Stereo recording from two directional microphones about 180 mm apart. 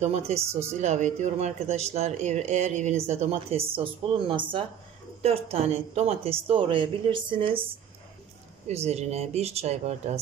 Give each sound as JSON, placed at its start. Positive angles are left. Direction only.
{"t": 0.0, "sound": "speech", "side_deg": -35}
{"t": 0.4, "sound": "speech", "side_deg": -15}
{"t": 0.7, "sound": "a woman's voice", "side_deg": -40}
{"t": 8.6, "sound": "speech", "side_deg": -35}